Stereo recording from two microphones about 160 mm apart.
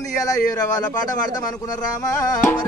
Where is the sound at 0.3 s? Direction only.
25° left (ahead or behind).